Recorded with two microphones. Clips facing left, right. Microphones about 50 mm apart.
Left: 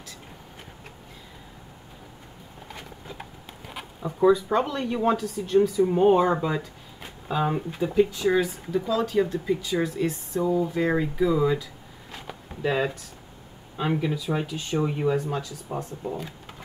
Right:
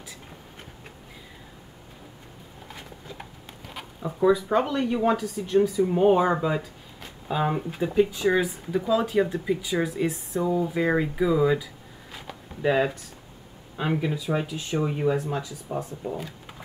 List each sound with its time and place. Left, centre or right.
3.2 s a sound: centre
4.3 s speech: centre
12.6 s speech: centre